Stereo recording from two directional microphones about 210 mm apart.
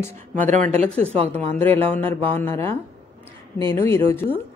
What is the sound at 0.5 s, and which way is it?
Speech, 35° right (ahead or behind).